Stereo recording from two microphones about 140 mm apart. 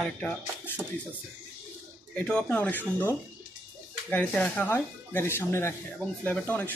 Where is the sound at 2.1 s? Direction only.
10° left (ahead or behind).